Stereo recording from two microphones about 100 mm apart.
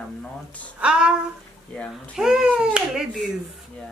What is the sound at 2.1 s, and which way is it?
Speech, 5° right (ahead or behind).